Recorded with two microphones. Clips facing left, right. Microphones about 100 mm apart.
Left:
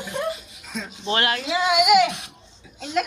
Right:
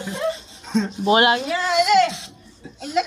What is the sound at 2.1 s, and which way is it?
Speech, 65° left (ahead or behind).